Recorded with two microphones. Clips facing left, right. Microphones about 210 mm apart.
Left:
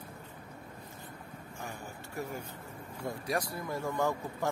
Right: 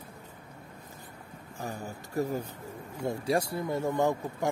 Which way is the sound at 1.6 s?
35° right (ahead or behind).